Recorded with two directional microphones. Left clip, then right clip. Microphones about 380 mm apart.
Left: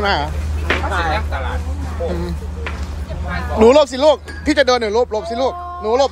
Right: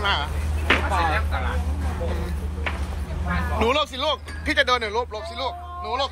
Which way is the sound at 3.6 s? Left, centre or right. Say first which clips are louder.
Left 13 dB; centre.